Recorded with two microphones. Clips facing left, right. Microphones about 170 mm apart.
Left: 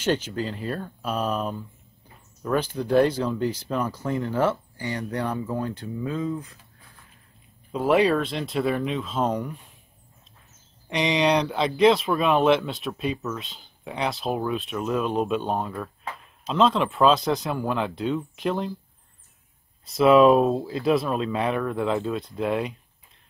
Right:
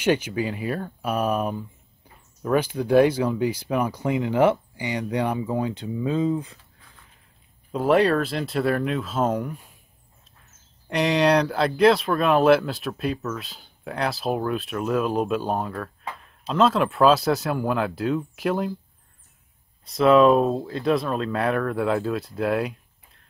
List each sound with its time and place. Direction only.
0.0 s speech: 10° right (ahead or behind)
6.0 s speech: 25° right (ahead or behind)
7.7 s speech: centre (ahead or behind)
10.9 s speech: centre (ahead or behind)
19.8 s speech: 5° left (ahead or behind)